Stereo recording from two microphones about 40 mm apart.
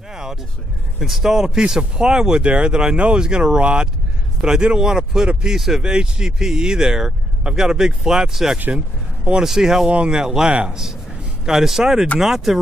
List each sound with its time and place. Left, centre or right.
0.1 s vehicle: centre
0.9 s speech: centre
8.7 s a sound: right
9.4 s speech: centre
9.8 s speech: right; by 12.5 s centre